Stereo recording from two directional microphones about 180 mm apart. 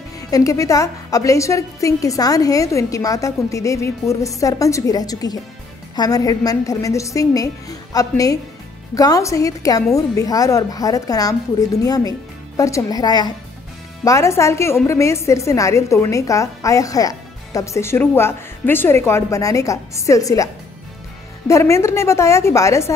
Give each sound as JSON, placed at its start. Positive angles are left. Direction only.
{"t": 0.3, "sound": "a woman's voice", "side_deg": 20}
{"t": 21.5, "sound": "a woman's voice", "side_deg": 15}